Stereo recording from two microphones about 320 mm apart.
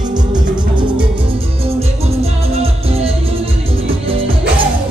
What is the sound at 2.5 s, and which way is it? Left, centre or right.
Music, centre.